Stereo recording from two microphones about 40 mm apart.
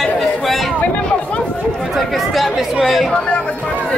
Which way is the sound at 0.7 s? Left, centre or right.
Left.